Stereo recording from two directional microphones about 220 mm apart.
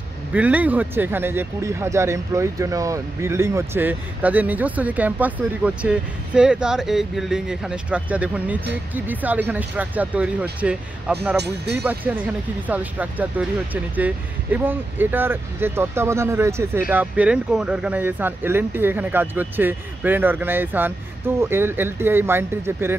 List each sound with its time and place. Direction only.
0.3 s speech: 5° right (ahead or behind)
11.3 s speech: 50° right (ahead or behind)
11.7 s speech: 10° right (ahead or behind)